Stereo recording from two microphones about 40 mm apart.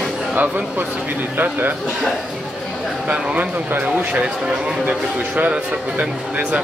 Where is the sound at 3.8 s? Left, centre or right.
Right.